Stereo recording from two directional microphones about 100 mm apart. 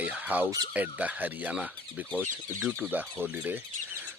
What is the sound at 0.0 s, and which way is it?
Squawk, 15° right (ahead or behind).